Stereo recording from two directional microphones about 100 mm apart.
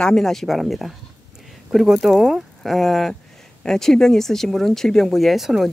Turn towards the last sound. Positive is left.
turn(degrees=0)  # may be behind; listen again after turning